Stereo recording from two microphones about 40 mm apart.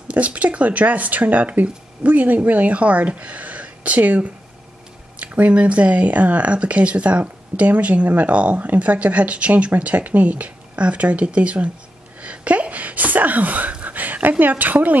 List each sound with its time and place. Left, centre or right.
0.1 s speech: right
12.2 s sneeze: right
13.7 s a sound: right
14.4 s speech: right